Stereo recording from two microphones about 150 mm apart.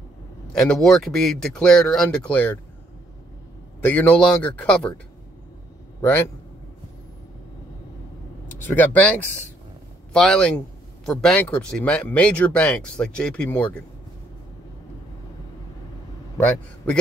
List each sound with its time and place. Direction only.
0.5 s speech: 5° left (ahead or behind)
3.8 s speech: 10° left (ahead or behind)
8.5 s speech: 10° left (ahead or behind)
16.3 s a man's voice: 10° left (ahead or behind)